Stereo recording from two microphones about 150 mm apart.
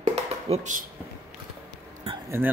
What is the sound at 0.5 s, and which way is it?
Speech, 55° right (ahead or behind).